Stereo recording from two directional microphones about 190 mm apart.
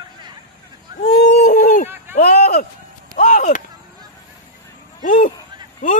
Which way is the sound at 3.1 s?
45° left (ahead or behind).